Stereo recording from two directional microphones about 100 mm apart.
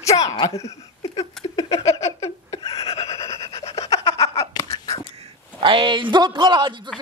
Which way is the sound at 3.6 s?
90° left.